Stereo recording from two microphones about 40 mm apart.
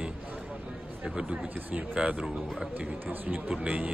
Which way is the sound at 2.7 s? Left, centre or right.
Right.